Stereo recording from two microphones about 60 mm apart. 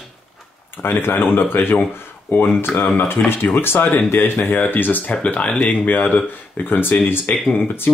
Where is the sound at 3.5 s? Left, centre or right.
Left.